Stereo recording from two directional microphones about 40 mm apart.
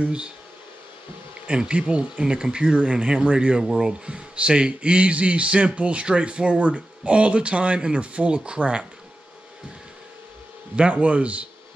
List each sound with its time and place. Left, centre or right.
0.0 s speech: right
1.5 s speech: right
3.6 s speech: centre
4.0 s speech: right
10.8 s a man's voice: right